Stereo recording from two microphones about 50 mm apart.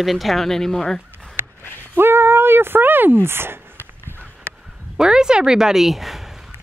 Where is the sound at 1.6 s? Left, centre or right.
Left.